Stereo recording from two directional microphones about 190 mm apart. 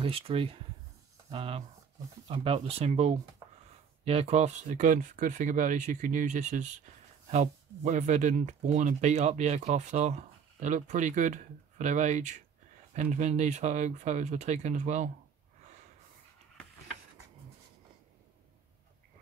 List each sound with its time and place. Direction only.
0.0 s speech: 30° right (ahead or behind)